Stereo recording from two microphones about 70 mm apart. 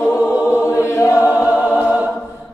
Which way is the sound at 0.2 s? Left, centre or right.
Right.